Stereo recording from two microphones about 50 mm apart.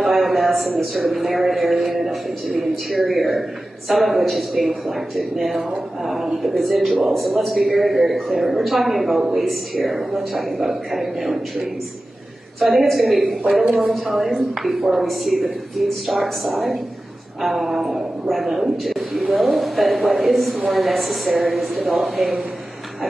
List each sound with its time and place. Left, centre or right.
0.0 s a sound: centre
0.9 s a man's voice: centre
12.5 s a man's voice: centre
13.7 s a woman's voice: centre
13.9 s a man's voice: centre